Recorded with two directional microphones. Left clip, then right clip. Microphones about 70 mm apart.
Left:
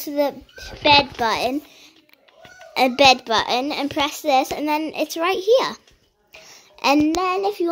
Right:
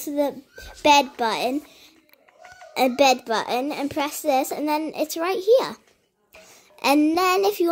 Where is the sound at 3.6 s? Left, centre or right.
Centre.